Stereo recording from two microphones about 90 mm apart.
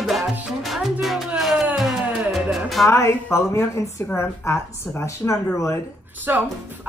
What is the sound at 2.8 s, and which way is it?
Speech, 35° left (ahead or behind).